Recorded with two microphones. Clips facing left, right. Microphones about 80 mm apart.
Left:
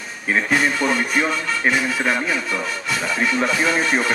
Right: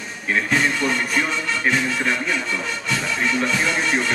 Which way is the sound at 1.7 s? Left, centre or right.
Centre.